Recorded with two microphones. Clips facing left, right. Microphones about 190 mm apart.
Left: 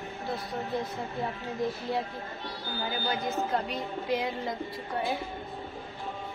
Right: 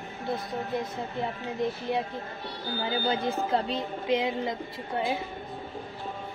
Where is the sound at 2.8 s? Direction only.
30° right (ahead or behind).